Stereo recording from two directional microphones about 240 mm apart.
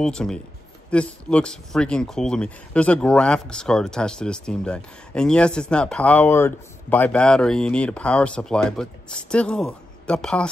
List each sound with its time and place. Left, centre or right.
0.0 s speech: centre